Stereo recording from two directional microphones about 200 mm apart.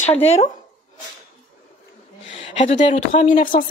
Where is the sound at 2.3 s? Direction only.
25° left (ahead or behind).